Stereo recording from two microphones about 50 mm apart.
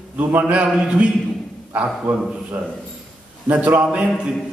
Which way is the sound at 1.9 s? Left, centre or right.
Centre.